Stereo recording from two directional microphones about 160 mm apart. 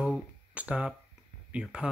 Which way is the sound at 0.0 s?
10° right (ahead or behind).